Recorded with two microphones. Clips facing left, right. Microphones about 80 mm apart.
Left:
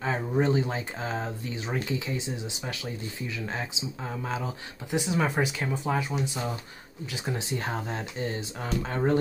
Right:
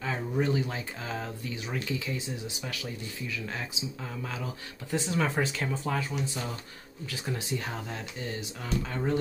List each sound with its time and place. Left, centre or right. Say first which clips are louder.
0.0 s speech: left 3 dB; left
4.9 s speech: left 2 dB; centre
7.5 s speech: left 3 dB; left